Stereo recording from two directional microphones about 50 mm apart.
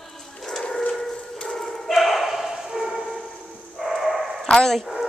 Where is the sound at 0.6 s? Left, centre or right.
Centre.